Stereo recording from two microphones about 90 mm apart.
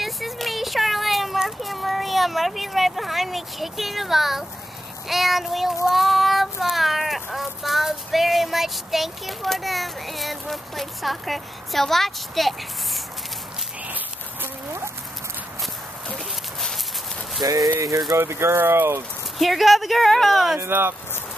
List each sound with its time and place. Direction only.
0.0 s a sound: centre (ahead or behind)
5.0 s child singing: centre (ahead or behind)
13.8 s a sound: 20° right (ahead or behind)
17.4 s speech: 40° right (ahead or behind)
19.3 s child singing: centre (ahead or behind)
20.5 s speech: 25° right (ahead or behind)